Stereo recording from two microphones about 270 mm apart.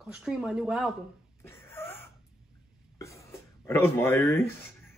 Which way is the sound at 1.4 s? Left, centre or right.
Centre.